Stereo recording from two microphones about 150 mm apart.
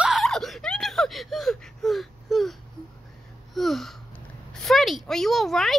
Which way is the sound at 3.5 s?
Centre (ahead or behind).